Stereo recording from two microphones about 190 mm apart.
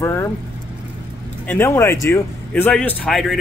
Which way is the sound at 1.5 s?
10° left (ahead or behind).